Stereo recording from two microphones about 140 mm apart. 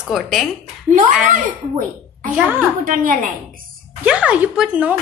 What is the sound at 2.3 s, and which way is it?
Speech, 10° right (ahead or behind).